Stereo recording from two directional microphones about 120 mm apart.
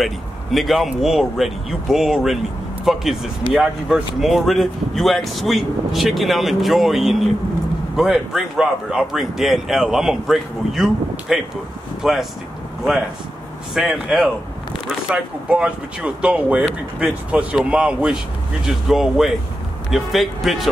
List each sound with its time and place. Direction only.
0.0 s speech: centre (ahead or behind)
13.7 s speech: 5° right (ahead or behind)